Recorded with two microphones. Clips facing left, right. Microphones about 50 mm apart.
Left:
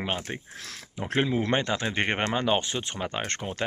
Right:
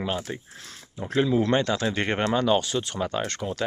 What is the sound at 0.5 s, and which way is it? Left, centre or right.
Speech, left.